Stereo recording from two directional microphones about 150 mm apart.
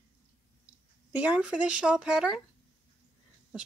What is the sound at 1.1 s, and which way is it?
Speech, 10° right (ahead or behind).